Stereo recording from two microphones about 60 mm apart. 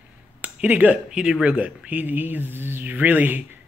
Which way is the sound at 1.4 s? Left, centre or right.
Right.